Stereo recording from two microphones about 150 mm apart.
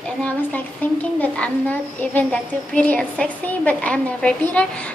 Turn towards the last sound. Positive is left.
turn(degrees=10)  # may be behind; listen again after turning